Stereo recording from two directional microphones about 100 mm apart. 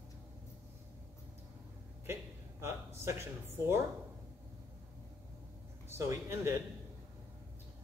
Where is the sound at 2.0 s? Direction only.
25° right (ahead or behind).